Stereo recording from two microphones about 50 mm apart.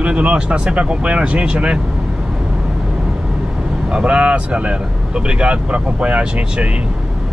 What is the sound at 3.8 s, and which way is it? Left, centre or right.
Speech, right.